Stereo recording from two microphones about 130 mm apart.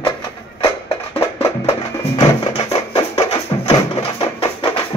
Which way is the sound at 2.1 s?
45° left (ahead or behind).